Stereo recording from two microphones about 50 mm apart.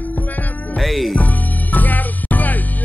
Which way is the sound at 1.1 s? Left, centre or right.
Left.